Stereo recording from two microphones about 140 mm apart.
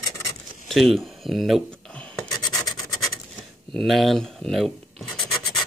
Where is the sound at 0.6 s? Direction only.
Centre (ahead or behind).